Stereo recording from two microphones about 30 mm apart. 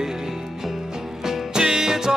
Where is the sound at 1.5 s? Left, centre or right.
Centre.